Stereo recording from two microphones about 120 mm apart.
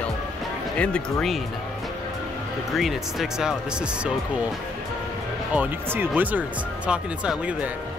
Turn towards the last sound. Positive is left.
turn(degrees=-10)  # may be behind; listen again after turning